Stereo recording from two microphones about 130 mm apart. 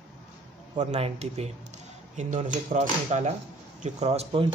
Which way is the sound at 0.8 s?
55° right (ahead or behind).